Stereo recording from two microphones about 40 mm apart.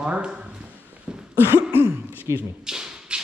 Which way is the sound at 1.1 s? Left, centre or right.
Right.